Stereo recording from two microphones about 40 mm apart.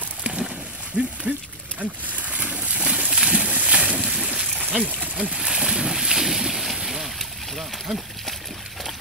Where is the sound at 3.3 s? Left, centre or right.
Right.